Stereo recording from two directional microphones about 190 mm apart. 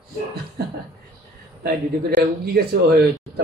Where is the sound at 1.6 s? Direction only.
55° right (ahead or behind).